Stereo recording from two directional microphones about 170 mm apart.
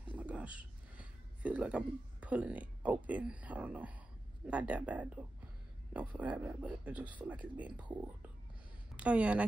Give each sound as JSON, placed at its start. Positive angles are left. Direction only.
{"t": 0.1, "sound": "speech", "side_deg": -10}
{"t": 8.9, "sound": "speech", "side_deg": -10}